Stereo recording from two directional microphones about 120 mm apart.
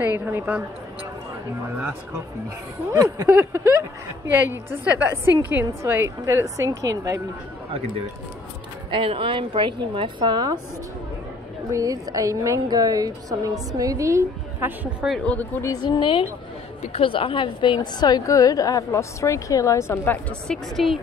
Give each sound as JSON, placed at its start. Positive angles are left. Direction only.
{"t": 0.0, "sound": "a woman's voice", "side_deg": -15}
{"t": 2.9, "sound": "a woman's voice", "side_deg": -25}
{"t": 8.9, "sound": "a woman's voice", "side_deg": -45}
{"t": 11.7, "sound": "a woman's voice", "side_deg": -30}
{"t": 15.2, "sound": "speech", "side_deg": 15}
{"t": 15.6, "sound": "a woman's voice", "side_deg": 35}